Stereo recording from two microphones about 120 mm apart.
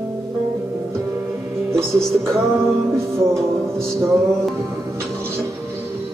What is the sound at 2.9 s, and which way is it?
Music, 25° right (ahead or behind).